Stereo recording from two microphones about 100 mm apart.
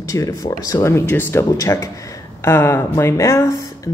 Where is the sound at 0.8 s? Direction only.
25° left (ahead or behind).